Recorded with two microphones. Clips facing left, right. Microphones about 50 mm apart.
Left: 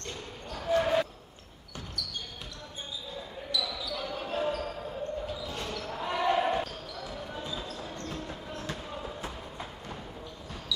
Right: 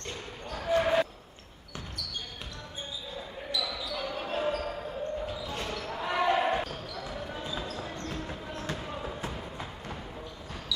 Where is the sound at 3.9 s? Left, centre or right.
Right.